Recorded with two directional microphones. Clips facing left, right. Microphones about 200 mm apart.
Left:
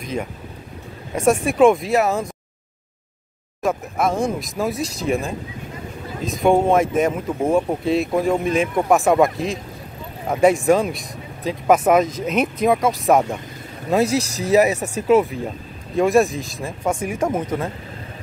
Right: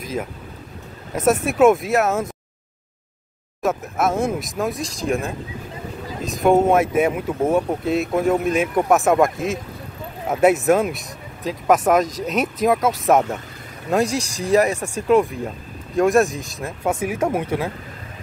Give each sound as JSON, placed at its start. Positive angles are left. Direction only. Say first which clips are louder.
{"t": 0.0, "sound": "speech", "louder": "even", "side_deg": 0}
{"t": 3.6, "sound": "speech", "louder": "even", "side_deg": 0}